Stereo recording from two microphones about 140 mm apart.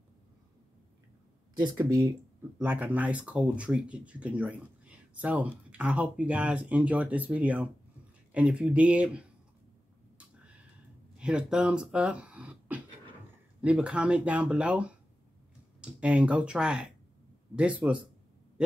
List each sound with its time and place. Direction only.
1.6 s speech: 30° right (ahead or behind)
2.6 s speech: 10° right (ahead or behind)
11.1 s speech: 5° right (ahead or behind)